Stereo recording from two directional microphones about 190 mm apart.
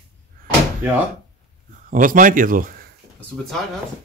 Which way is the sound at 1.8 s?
45° right (ahead or behind).